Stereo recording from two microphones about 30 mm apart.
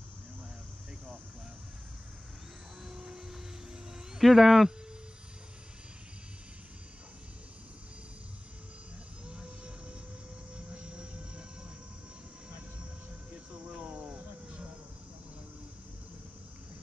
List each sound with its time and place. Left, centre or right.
2.8 s aircraft: centre
4.2 s speech: centre
10.7 s vehicle: right
13.3 s a sound: right